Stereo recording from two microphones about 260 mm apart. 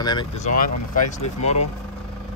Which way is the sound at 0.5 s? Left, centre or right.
Left.